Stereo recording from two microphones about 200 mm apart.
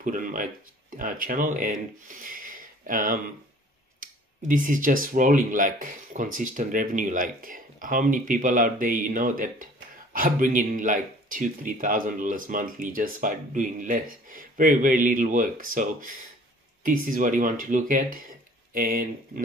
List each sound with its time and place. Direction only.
0.0 s speech: 45° right (ahead or behind)